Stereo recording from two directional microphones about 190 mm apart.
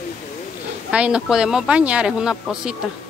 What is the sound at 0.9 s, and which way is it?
Speech, 5° right (ahead or behind).